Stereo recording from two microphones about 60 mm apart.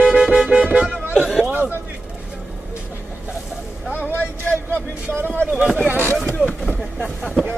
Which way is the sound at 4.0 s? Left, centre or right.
Left.